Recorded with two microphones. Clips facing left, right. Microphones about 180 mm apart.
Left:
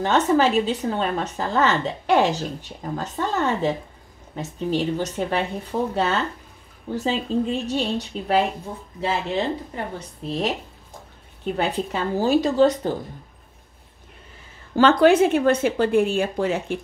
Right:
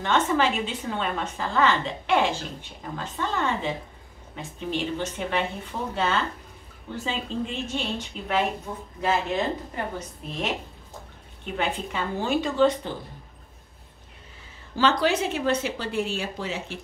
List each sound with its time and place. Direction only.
0.0 s a woman's voice: 40° left (ahead or behind)
9.9 s a woman's voice: 35° left (ahead or behind)
14.8 s speech: 55° left (ahead or behind)